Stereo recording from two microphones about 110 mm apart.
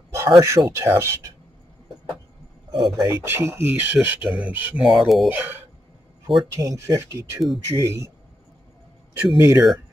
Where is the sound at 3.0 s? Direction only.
30° right (ahead or behind); by 4.8 s 15° right (ahead or behind).